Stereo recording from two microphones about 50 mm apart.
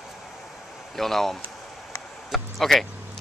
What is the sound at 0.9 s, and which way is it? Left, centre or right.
Speech, centre.